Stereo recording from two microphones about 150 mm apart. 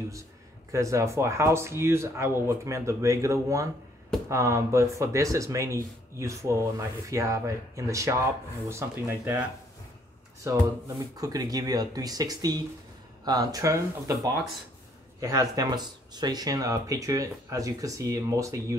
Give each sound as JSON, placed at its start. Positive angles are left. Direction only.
{"t": 0.7, "sound": "speech", "side_deg": -20}
{"t": 11.1, "sound": "speech", "side_deg": -25}
{"t": 15.1, "sound": "speech", "side_deg": -25}